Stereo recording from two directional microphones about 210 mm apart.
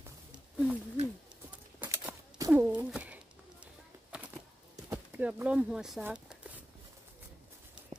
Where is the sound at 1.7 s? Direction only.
10° right (ahead or behind).